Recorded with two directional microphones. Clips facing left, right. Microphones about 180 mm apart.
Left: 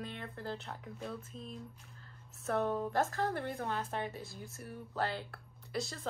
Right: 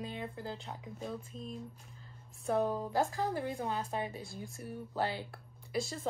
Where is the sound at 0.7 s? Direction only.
15° right (ahead or behind).